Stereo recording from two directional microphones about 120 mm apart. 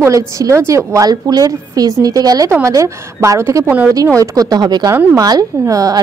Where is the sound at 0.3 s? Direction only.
25° right (ahead or behind).